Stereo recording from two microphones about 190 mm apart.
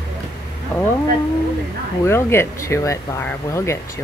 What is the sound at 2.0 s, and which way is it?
Speech, 15° left (ahead or behind).